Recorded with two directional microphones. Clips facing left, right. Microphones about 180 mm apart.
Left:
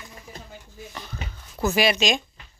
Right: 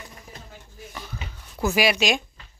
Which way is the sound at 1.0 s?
5° right (ahead or behind).